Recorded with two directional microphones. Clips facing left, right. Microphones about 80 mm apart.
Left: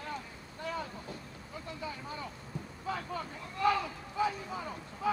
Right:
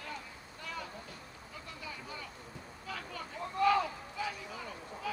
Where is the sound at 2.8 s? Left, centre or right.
Left.